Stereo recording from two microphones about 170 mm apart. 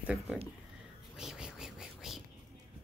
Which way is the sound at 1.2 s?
5° right (ahead or behind).